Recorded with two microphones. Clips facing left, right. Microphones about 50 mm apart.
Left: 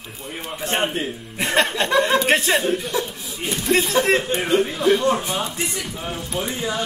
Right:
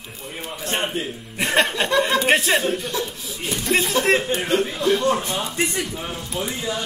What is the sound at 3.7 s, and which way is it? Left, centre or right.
A man's voice, centre.